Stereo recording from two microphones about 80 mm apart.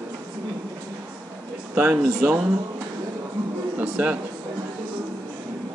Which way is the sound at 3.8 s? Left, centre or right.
Centre.